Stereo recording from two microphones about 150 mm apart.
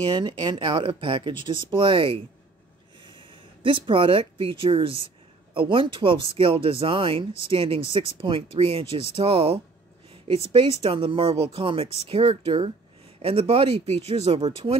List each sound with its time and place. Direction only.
0.0 s speech: 30° right (ahead or behind)